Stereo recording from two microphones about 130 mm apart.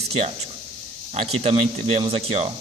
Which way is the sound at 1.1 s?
50° right (ahead or behind).